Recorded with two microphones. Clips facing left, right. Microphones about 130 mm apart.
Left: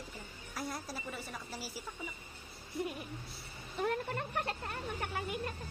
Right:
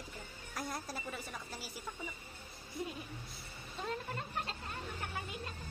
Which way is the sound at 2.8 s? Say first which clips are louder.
Left 4 dB; 65° left (ahead or behind).